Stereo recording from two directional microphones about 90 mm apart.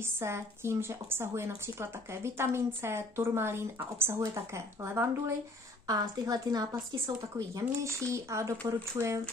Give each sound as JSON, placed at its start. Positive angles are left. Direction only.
{"t": 0.2, "sound": "speech", "side_deg": -30}
{"t": 5.9, "sound": "a woman's voice", "side_deg": -45}